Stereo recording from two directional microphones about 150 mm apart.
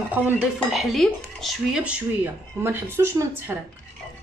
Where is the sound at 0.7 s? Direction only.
Centre (ahead or behind).